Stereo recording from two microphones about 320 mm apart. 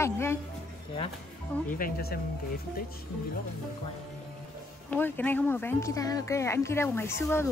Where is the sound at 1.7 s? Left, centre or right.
Left.